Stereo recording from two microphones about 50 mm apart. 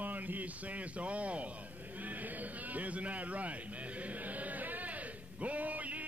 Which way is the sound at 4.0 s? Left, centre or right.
Right.